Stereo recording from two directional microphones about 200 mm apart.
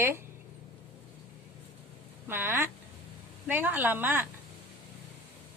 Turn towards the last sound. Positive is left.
turn(degrees=-10)  # may be behind; listen again after turning